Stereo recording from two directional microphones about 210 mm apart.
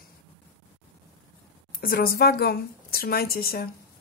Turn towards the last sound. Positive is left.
turn(degrees=45)  # may be behind; listen again after turning